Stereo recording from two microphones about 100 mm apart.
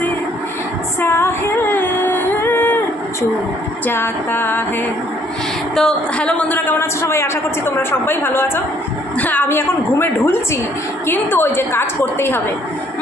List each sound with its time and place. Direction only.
1.0 s female singing: 20° left (ahead or behind)
3.8 s a woman's voice: 20° left (ahead or behind)
5.8 s a woman's voice: 5° left (ahead or behind); by 12.4 s 25° left (ahead or behind)